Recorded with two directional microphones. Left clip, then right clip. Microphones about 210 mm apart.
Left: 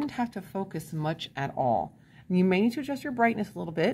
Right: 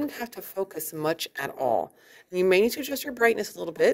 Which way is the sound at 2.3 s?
35° right (ahead or behind).